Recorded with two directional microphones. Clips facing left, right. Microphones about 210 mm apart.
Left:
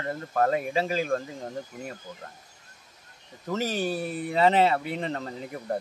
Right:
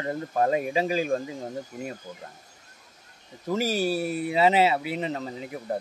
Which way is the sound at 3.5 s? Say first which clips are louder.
Right 3 dB; 10° right (ahead or behind).